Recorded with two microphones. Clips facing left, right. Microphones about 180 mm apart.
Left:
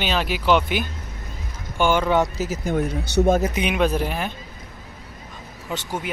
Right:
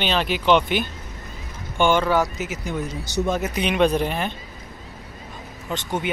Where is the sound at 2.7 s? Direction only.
60° left (ahead or behind).